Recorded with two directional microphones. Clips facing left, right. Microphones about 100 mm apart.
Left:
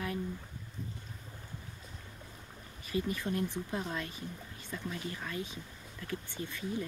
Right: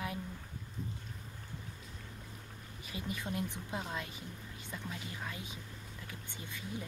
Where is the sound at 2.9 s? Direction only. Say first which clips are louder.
Left 6 dB; 20° right (ahead or behind).